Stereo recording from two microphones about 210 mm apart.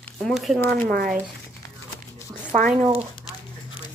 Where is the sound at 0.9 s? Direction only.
45° right (ahead or behind).